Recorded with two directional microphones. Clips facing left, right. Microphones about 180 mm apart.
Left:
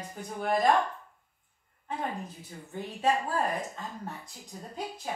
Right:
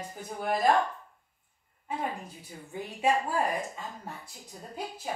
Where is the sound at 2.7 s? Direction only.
10° right (ahead or behind).